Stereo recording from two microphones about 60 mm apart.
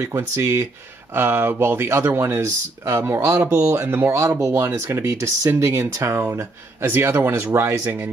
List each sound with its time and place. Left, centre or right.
0.4 s speech: right
2.9 s speech: right
3.4 s speech: right
4.1 s speech: right
6.3 s speech: right
7.6 s speech: right